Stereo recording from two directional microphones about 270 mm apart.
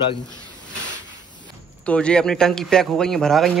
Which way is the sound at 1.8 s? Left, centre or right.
Centre.